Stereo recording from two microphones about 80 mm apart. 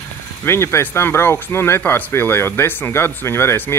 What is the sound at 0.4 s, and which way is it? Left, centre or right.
Speech, left.